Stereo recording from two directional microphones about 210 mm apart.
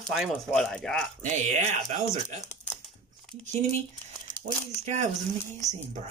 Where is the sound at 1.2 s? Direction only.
35° right (ahead or behind).